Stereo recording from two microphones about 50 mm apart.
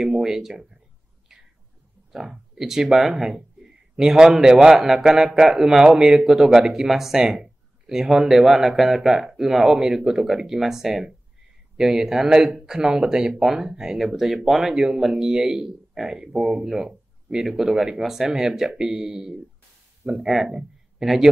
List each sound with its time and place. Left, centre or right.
0.0 s speech: centre
2.1 s speech: centre